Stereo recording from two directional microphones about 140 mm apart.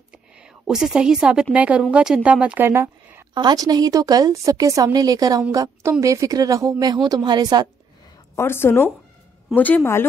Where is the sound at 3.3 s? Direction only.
30° right (ahead or behind).